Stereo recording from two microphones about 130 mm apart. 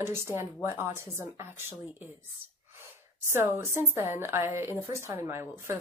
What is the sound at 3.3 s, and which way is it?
Speech, 20° right (ahead or behind).